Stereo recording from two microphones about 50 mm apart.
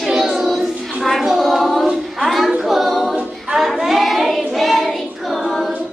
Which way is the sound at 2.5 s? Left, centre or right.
Centre.